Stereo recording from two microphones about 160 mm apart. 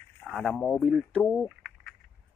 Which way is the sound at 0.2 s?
Centre (ahead or behind).